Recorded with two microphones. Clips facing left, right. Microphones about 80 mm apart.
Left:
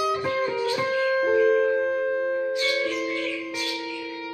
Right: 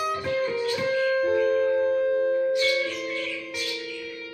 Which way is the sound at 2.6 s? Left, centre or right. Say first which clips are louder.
Left 1 dB; centre.